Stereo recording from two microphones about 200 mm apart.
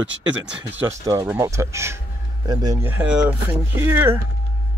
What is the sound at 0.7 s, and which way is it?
Speech, 15° right (ahead or behind).